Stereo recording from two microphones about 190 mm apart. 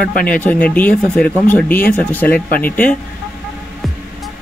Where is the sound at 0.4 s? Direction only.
5° left (ahead or behind).